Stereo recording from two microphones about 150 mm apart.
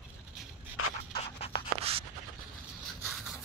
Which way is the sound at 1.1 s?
40° left (ahead or behind).